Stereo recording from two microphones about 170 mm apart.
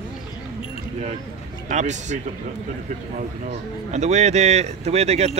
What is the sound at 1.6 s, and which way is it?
Speech, 45° right (ahead or behind).